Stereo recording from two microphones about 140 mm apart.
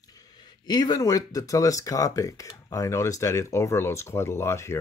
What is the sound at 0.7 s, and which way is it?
Speech, 30° left (ahead or behind).